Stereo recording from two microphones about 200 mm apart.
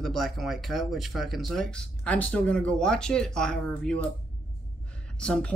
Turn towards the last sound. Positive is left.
turn(degrees=5)  # may be behind; listen again after turning